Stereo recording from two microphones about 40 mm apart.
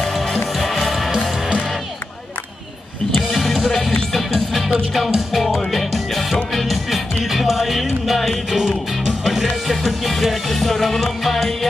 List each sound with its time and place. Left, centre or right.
0.6 s music: centre
4.1 s music: centre
8.5 s music: centre
9.2 s music: centre